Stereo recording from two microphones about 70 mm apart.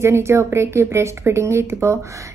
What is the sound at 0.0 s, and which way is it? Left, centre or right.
A woman's voice, right.